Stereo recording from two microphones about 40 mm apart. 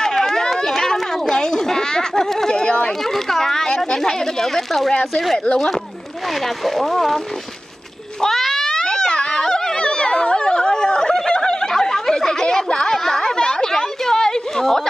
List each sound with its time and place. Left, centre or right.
0.0 s chatter: centre
3.3 s speech: centre
6.6 s speech: centre
8.3 s a sound: centre